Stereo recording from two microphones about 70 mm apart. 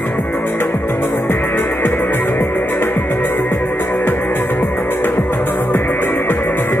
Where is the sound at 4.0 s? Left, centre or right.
Left.